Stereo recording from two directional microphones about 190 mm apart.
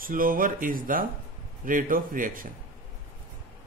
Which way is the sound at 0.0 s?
45° right (ahead or behind).